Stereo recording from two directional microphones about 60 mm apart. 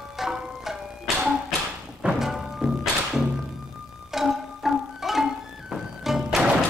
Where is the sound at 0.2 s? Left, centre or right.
Centre.